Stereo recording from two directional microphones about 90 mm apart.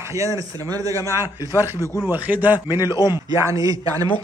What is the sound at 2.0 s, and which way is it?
A man's voice, 20° right (ahead or behind).